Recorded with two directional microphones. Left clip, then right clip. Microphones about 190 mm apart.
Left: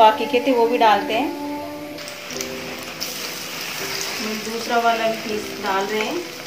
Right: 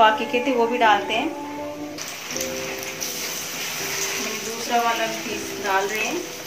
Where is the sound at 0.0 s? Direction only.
25° left (ahead or behind).